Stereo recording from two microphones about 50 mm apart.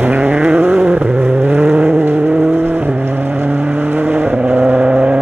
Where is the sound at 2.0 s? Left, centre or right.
Right.